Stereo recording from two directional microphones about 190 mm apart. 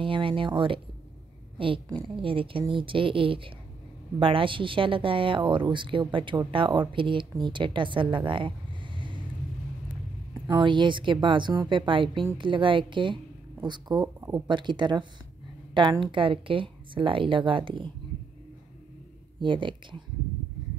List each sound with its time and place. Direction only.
0.0 s speech: 25° right (ahead or behind)
10.4 s speech: 20° right (ahead or behind)
19.4 s speech: 25° right (ahead or behind)